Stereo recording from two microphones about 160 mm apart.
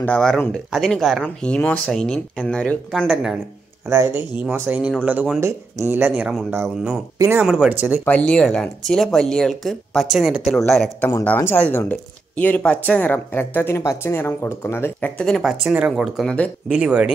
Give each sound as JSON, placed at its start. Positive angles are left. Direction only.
{"t": 0.0, "sound": "speech", "side_deg": 5}
{"t": 3.9, "sound": "speech", "side_deg": -15}
{"t": 7.4, "sound": "speech", "side_deg": 0}
{"t": 8.0, "sound": "speech", "side_deg": 10}